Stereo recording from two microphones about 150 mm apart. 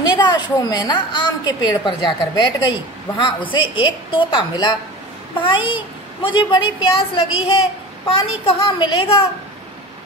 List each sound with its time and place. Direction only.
0.0 s a woman's voice: 30° left (ahead or behind)